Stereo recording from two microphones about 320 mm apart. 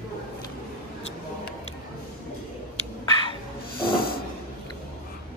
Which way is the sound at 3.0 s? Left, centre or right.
Centre.